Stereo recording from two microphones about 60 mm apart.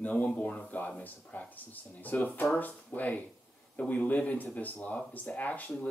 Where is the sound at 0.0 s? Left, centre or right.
Left.